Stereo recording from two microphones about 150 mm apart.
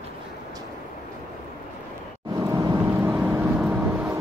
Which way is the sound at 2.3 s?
25° right (ahead or behind).